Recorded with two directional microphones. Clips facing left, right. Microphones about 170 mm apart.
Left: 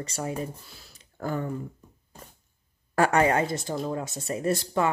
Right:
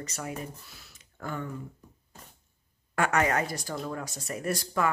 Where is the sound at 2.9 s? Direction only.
35° left (ahead or behind).